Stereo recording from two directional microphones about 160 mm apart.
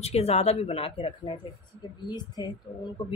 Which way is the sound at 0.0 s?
40° left (ahead or behind).